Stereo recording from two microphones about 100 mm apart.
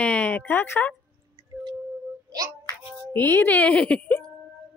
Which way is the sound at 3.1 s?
20° left (ahead or behind).